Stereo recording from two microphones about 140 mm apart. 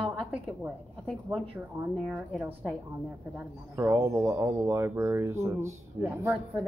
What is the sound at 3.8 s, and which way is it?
Speech, 20° right (ahead or behind).